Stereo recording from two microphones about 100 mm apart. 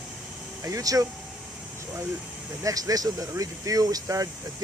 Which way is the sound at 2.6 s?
35° right (ahead or behind).